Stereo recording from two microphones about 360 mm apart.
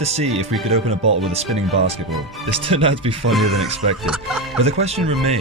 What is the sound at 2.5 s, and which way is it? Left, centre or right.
Speech, centre.